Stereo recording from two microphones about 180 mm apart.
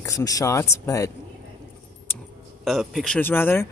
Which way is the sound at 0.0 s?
20° left (ahead or behind).